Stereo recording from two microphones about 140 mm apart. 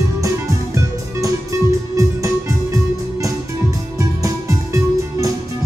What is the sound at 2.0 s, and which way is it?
Music, 25° right (ahead or behind).